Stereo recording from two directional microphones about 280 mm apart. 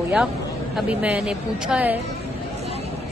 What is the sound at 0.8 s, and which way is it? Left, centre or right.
A woman's voice, centre.